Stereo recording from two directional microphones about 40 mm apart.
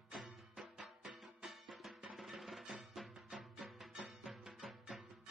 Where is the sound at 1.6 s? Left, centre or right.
Centre.